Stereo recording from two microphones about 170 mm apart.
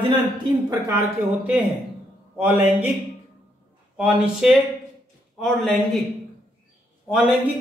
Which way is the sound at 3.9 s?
5° right (ahead or behind).